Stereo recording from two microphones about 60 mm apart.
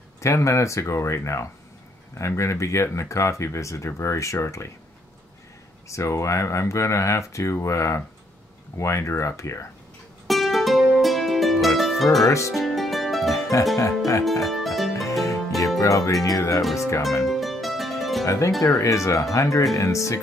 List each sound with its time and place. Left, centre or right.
0.2 s speech: left
5.9 s speech: left
10.2 s music: centre
12.3 s speech: left
12.5 s music: centre
13.4 s music: left
14.4 s music: centre
15.8 s speech: left
17.3 s music: centre
18.2 s speech: left